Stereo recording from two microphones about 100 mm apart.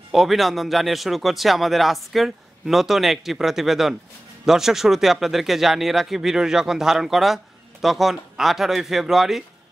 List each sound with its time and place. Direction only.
0.1 s speech: centre (ahead or behind)